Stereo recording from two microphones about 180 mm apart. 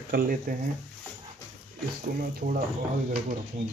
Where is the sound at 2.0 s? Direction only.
50° right (ahead or behind).